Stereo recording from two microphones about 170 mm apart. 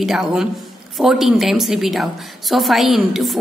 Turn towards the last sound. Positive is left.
turn(degrees=0)  # may be behind; listen again after turning